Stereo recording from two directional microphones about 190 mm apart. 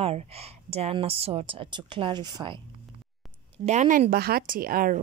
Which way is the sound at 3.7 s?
40° right (ahead or behind).